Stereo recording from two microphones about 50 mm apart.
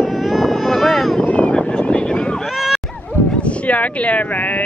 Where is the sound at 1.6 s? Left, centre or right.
Centre.